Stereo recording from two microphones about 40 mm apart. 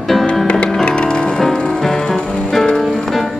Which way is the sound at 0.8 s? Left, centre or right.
Left.